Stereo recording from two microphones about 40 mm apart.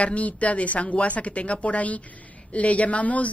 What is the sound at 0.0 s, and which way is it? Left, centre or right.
Speech, left.